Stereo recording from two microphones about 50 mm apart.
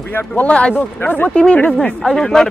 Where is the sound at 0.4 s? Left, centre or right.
Left.